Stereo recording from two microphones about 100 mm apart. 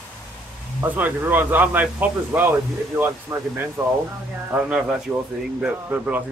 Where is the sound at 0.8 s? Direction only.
15° right (ahead or behind).